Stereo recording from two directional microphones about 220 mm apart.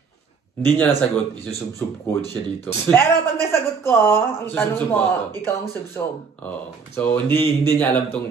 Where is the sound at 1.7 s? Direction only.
10° left (ahead or behind).